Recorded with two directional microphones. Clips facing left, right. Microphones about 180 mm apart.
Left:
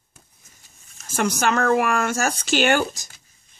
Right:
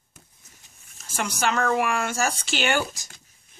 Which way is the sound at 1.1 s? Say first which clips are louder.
Left 4 dB; 50° left (ahead or behind).